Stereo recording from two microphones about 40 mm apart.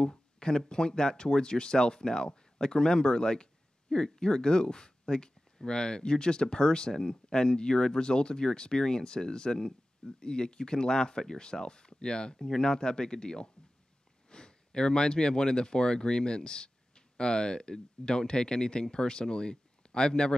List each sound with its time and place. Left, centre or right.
0.0 s speech: centre